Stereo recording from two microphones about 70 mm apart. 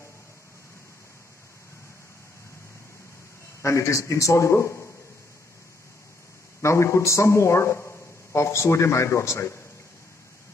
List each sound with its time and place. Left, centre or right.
3.6 s a man's voice: left
6.6 s a man's voice: left